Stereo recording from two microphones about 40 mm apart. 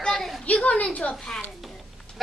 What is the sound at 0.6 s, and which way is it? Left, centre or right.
Speech, left.